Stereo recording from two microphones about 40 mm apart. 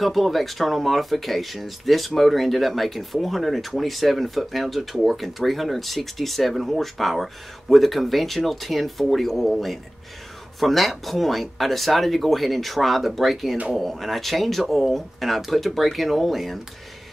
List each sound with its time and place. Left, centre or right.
0.0 s speech: centre